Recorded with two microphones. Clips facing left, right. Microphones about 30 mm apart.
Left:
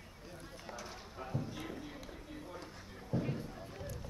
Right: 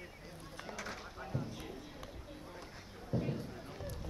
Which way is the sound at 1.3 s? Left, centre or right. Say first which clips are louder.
Even; right.